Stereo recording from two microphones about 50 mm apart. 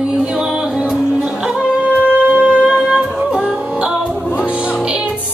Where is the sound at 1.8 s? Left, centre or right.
Right.